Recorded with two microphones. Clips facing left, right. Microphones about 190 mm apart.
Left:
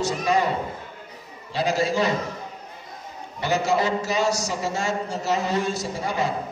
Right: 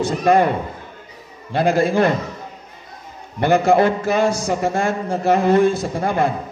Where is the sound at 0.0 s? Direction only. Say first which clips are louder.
Right 7 dB; 55° right (ahead or behind).